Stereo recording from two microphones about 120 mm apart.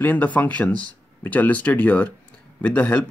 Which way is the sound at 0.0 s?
15° left (ahead or behind).